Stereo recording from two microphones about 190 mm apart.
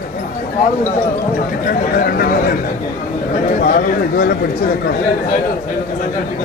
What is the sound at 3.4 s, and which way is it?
Speech, 45° left (ahead or behind).